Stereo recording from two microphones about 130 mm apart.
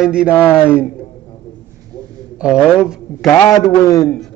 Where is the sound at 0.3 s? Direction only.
15° left (ahead or behind).